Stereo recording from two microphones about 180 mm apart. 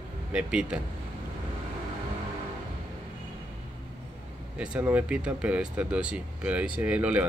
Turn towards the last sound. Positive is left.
turn(degrees=-10)  # may be behind; listen again after turning